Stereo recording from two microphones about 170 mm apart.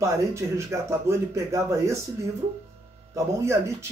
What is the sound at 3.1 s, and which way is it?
Speech, 15° right (ahead or behind).